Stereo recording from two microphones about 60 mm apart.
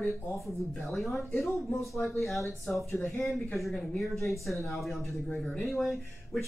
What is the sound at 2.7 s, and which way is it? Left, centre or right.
Speech, left.